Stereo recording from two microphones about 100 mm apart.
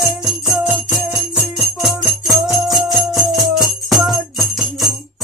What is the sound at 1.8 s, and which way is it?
Jingle bell, 5° right (ahead or behind).